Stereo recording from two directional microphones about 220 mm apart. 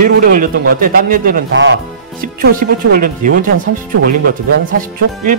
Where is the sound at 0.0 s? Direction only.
40° right (ahead or behind).